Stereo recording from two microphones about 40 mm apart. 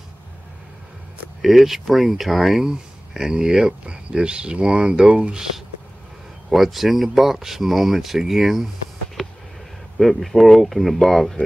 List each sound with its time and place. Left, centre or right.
1.4 s speech: centre
3.2 s speech: centre
6.5 s speech: centre
9.2 s a sound: centre
9.9 s speech: centre